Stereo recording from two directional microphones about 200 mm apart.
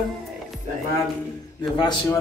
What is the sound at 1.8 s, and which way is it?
Speech, 20° left (ahead or behind).